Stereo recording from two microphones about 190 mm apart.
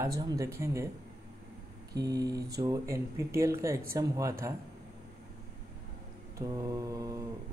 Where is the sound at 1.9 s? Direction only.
20° right (ahead or behind).